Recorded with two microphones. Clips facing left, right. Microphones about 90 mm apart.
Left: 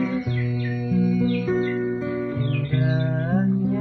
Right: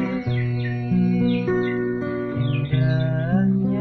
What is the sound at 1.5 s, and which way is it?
Music, 40° right (ahead or behind).